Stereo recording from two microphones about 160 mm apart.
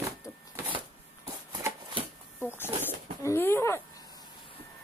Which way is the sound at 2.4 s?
15° left (ahead or behind).